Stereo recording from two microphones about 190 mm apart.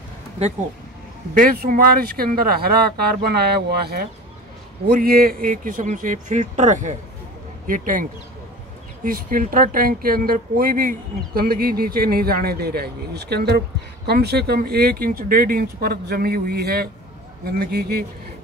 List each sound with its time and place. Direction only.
1.3 s a man's voice: 45° right (ahead or behind)